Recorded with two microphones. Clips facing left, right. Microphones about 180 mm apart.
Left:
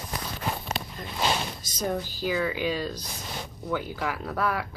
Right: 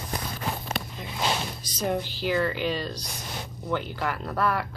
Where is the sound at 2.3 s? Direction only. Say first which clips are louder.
Right 1 dB; 5° left (ahead or behind).